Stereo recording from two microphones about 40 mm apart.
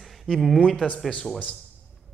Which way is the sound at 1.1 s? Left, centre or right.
Left.